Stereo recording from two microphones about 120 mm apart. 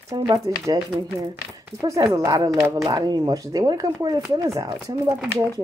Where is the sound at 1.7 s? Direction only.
25° right (ahead or behind).